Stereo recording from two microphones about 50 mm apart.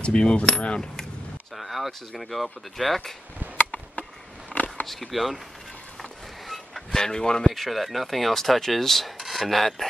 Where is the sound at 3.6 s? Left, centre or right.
Left.